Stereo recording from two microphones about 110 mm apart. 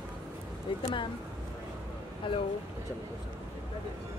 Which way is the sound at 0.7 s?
50° left (ahead or behind).